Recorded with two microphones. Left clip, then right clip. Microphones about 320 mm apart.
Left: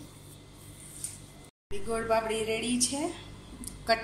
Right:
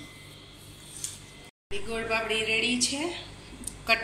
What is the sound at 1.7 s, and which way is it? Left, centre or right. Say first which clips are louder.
A woman's voice: left 1 dB; left.